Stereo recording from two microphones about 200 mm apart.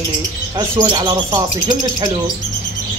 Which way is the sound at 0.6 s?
20° right (ahead or behind).